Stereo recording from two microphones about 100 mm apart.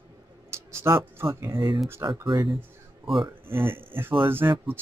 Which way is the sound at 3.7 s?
20° right (ahead or behind).